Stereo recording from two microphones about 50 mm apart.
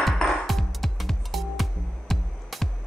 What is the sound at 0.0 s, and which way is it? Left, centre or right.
Music, centre.